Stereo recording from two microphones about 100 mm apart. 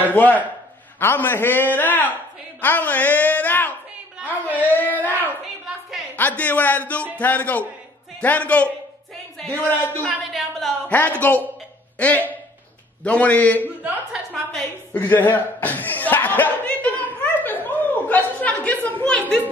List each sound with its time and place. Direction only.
0.1 s a man's voice: 15° left (ahead or behind)
10.0 s a woman's voice: centre (ahead or behind)
10.9 s a man's voice: 15° left (ahead or behind)
13.6 s speech: 15° right (ahead or behind)
15.0 s speech: 20° left (ahead or behind)